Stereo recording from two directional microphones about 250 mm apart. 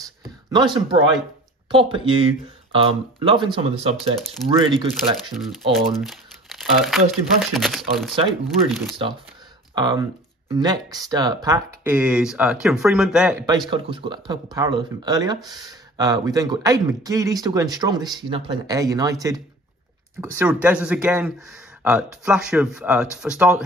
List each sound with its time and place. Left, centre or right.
0.5 s speech: centre
5.4 s speech: centre
9.8 s speech: centre
13.5 s speech: centre
20.2 s speech: centre